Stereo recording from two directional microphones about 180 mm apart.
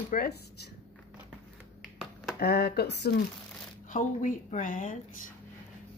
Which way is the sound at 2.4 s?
65° left (ahead or behind).